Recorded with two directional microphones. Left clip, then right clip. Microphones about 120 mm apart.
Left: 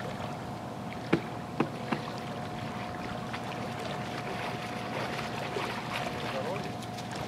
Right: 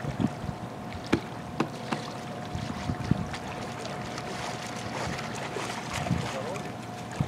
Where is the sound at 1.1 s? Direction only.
45° right (ahead or behind).